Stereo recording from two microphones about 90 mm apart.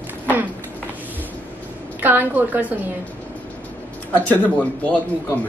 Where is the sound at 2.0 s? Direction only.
20° right (ahead or behind).